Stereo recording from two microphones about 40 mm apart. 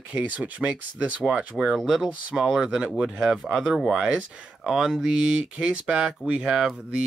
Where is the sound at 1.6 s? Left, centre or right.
Centre.